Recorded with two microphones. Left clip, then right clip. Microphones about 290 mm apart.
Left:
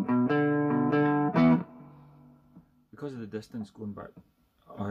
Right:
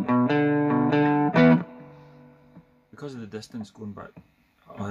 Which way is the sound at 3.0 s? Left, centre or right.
Centre.